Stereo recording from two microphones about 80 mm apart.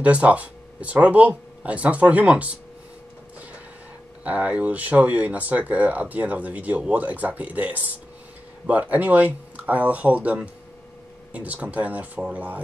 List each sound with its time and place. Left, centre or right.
0.0 s speech: centre
4.2 s speech: centre